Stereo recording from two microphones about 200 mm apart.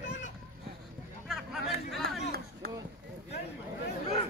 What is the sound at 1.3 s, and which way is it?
Speech, centre (ahead or behind).